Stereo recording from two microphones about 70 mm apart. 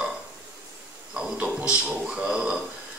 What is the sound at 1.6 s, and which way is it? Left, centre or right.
A man's voice, centre.